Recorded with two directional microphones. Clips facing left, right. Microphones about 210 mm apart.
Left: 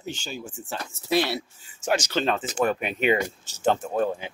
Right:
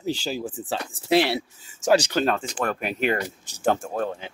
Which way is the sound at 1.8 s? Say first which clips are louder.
Right 6 dB; 35° right (ahead or behind).